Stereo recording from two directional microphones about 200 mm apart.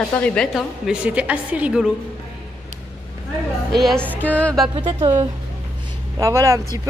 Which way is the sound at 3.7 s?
Centre (ahead or behind).